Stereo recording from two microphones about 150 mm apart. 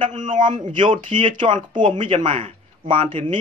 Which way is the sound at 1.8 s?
35° right (ahead or behind).